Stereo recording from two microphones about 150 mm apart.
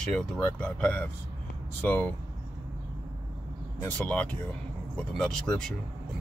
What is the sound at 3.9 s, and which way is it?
Speech, 10° left (ahead or behind).